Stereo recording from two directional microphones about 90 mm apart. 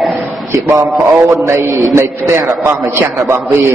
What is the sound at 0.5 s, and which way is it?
A man's voice, 30° right (ahead or behind).